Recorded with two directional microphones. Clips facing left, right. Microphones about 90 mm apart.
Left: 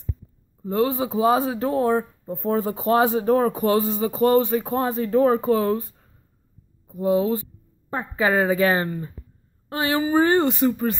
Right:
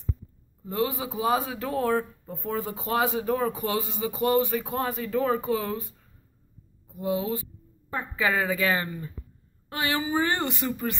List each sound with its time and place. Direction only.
0.6 s a man's voice: 30° left (ahead or behind)